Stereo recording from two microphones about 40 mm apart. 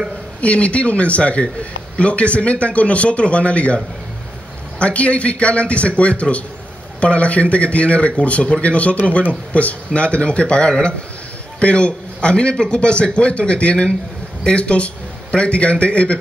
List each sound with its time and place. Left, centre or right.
0.4 s a man's voice: left